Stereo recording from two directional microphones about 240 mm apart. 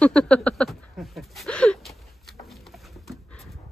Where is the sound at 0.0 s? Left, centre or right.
Centre.